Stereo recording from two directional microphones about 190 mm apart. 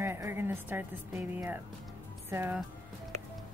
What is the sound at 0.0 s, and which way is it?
Speech, 15° right (ahead or behind).